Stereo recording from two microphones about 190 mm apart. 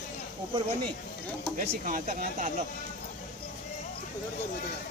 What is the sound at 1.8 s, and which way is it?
Speech, 45° right (ahead or behind).